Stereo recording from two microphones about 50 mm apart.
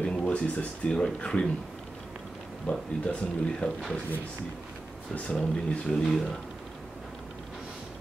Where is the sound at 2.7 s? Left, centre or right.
Left.